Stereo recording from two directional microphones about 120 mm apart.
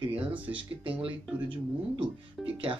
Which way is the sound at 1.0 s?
45° right (ahead or behind).